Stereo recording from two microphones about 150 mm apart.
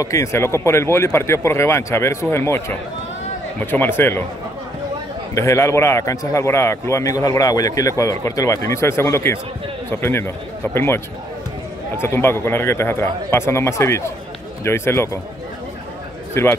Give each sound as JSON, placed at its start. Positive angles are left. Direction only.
{"t": 0.0, "sound": "speech", "side_deg": 20}
{"t": 3.7, "sound": "speech", "side_deg": 15}
{"t": 5.3, "sound": "a man's voice", "side_deg": 20}
{"t": 12.0, "sound": "speech", "side_deg": 15}
{"t": 16.4, "sound": "speech", "side_deg": 15}